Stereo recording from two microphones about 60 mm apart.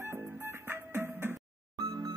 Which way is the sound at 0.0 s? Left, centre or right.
Right.